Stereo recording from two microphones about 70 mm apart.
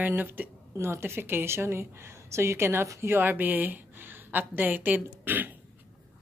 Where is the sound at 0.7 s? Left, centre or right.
Right.